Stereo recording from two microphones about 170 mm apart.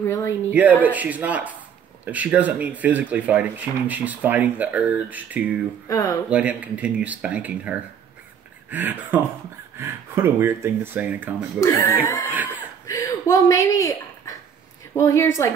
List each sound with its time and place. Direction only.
0.0 s speech: 15° left (ahead or behind)
0.5 s speech: 10° right (ahead or behind)
5.9 s speech: 20° left (ahead or behind)
6.3 s speech: 5° right (ahead or behind)
11.6 s speech: 15° left (ahead or behind)
12.8 s a sound: 15° left (ahead or behind)
15.0 s speech: 15° left (ahead or behind)